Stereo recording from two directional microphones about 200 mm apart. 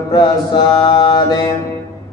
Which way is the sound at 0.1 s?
25° left (ahead or behind).